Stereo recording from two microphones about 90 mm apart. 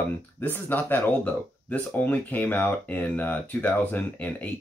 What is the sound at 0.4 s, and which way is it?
Speech, 20° left (ahead or behind).